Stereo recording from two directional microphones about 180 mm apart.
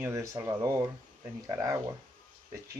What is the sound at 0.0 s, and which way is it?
Speech, 15° right (ahead or behind).